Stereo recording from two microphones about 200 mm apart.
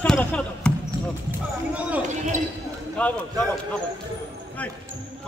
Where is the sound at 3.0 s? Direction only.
5° left (ahead or behind).